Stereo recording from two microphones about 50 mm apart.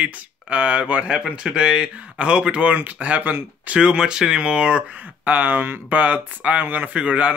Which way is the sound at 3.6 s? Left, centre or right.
Centre.